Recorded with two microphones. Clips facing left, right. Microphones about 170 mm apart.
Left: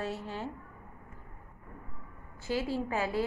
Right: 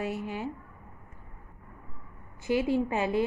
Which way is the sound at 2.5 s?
20° right (ahead or behind).